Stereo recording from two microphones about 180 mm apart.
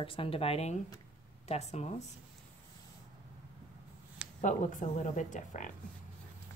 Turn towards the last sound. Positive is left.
turn(degrees=45)  # may be behind; listen again after turning